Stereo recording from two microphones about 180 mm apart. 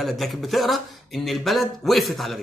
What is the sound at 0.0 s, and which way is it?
Speech, centre (ahead or behind).